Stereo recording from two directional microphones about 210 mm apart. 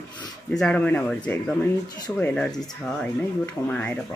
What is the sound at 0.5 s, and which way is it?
Speech, 5° left (ahead or behind).